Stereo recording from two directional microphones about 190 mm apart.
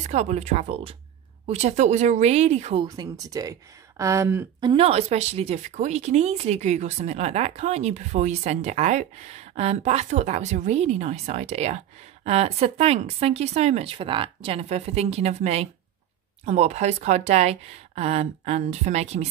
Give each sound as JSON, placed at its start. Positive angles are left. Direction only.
{"t": 0.0, "sound": "speech", "side_deg": -35}
{"t": 4.6, "sound": "speech", "side_deg": -30}